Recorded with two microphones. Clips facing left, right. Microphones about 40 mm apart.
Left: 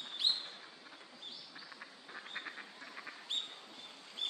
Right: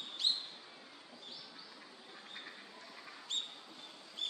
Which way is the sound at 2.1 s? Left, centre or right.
Left.